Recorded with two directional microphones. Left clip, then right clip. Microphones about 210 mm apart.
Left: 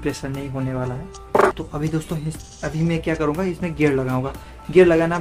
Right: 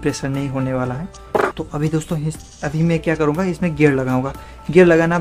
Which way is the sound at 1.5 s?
20° right (ahead or behind).